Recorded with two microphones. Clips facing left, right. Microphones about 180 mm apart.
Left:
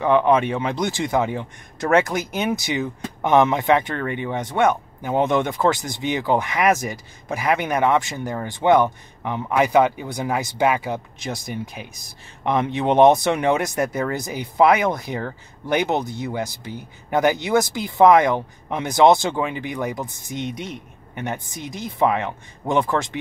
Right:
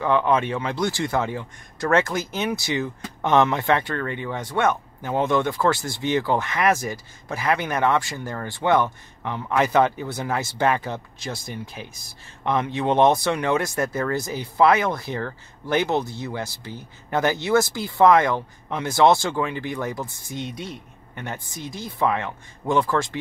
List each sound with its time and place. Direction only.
0.0 s speech: 20° left (ahead or behind)